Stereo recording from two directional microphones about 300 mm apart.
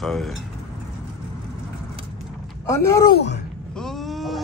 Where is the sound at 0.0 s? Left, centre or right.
Centre.